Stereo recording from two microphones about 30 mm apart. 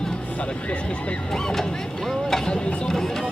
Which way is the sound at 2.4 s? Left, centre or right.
Left.